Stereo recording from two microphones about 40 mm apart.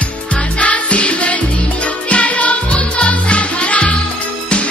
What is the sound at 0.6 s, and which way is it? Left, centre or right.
Music, left.